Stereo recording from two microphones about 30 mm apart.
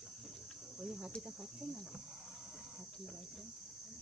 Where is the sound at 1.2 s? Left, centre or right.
Centre.